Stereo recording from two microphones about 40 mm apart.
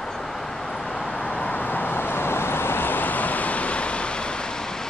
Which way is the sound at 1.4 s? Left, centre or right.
Left.